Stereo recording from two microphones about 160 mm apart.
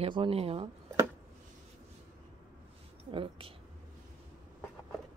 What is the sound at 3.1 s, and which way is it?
Speech, 35° right (ahead or behind).